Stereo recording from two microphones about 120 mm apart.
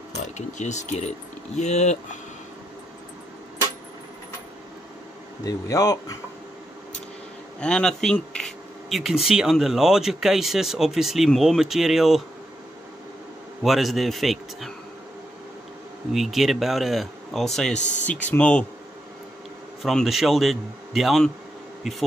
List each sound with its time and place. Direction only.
0.2 s speech: 80° left
5.4 s speech: 30° left (ahead or behind)
7.6 s speech: 5° left (ahead or behind)
13.6 s speech: centre (ahead or behind)
16.1 s speech: centre (ahead or behind)
17.7 s speech: 85° left
18.3 s speech: 10° left (ahead or behind)
19.8 s speech: centre (ahead or behind)